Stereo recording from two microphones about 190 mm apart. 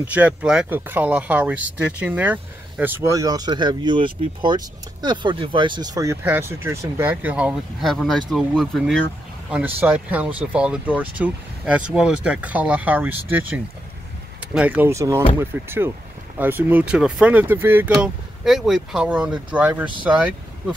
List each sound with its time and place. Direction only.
0.0 s speech: 5° right (ahead or behind)